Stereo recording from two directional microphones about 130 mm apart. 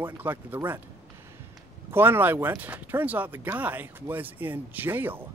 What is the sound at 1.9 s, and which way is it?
Speech, 15° right (ahead or behind).